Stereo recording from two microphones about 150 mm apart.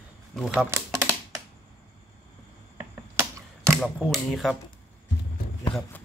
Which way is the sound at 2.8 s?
20° right (ahead or behind).